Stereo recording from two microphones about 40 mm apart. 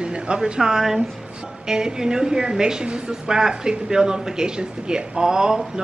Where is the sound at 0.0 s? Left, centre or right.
Right.